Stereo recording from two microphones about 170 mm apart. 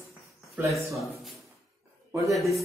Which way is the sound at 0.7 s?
Centre (ahead or behind).